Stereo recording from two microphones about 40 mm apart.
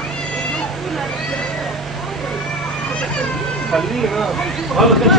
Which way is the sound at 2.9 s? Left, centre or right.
Left.